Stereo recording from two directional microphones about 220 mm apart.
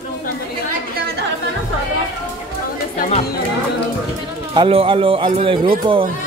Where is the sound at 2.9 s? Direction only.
40° left (ahead or behind).